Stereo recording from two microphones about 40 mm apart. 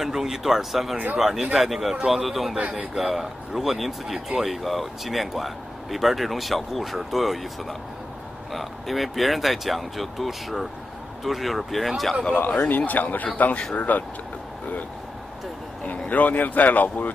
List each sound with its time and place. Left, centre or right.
0.0 s speech: centre
8.5 s speech: centre
12.5 s speech: left
15.9 s speech: left